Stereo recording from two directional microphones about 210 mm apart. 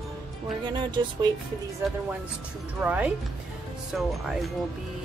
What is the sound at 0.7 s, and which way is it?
Speech, 20° right (ahead or behind).